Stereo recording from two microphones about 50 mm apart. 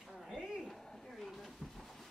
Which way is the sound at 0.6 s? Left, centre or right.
Centre.